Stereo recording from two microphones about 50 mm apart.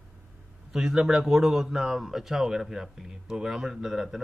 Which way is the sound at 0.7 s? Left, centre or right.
Centre.